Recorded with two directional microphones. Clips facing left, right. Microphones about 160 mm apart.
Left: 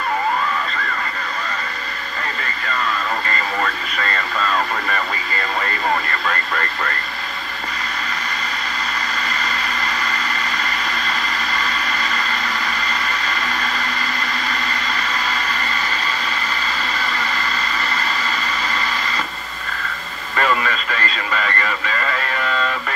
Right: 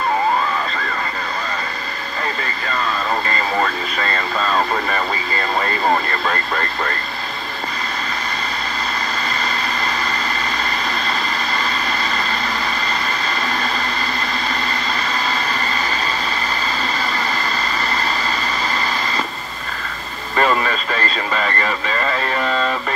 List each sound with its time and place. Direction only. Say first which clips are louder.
3.9 s radio: right 2 dB; 30° right (ahead or behind)
10.6 s vehicle: right 2 dB; 30° right (ahead or behind)
20.3 s radio: right 2 dB; 35° right (ahead or behind)